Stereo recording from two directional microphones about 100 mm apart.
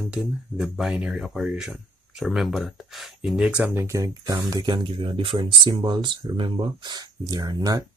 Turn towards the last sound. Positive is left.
turn(degrees=-40)  # may be behind; listen again after turning